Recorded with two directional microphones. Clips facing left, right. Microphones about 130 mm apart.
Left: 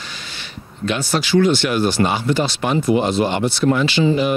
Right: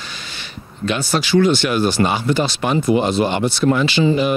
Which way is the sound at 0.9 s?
10° right (ahead or behind).